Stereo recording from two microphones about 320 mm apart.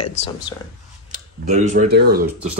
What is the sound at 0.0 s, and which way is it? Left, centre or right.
Speech, centre.